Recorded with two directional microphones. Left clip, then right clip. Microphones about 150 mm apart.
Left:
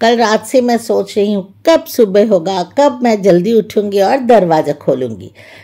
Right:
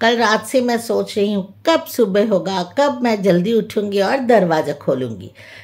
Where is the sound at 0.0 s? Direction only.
35° left (ahead or behind).